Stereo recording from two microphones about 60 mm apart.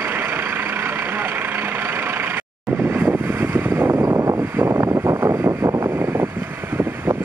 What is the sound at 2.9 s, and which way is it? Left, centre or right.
Vehicle, right.